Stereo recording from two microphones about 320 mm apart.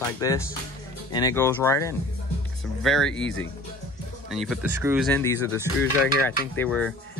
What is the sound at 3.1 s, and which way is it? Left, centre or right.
Speech, left.